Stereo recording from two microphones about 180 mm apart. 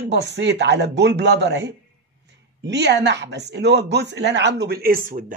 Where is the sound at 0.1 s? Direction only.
80° right.